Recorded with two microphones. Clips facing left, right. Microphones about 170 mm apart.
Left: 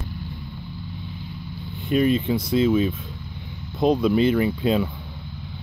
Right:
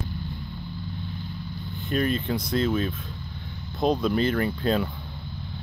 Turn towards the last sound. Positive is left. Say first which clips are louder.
# left 3 dB
turn(degrees=5)  # may be behind; listen again after turning